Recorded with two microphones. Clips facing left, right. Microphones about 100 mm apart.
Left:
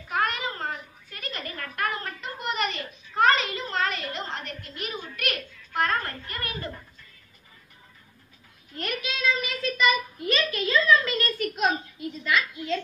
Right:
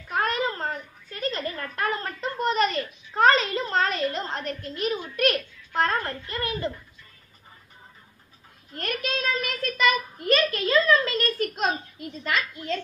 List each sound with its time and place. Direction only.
0.1 s a sound: 35° right (ahead or behind)
5.1 s a child's voice: 35° right (ahead or behind)
8.7 s a child's voice: 45° right (ahead or behind)